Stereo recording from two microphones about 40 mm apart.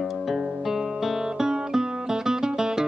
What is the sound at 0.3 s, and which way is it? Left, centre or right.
Music, centre.